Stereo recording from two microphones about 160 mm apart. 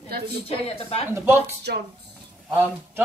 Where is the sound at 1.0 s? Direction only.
15° right (ahead or behind).